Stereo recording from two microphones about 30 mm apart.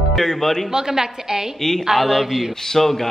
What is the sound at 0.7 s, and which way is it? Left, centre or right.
A woman's voice, centre.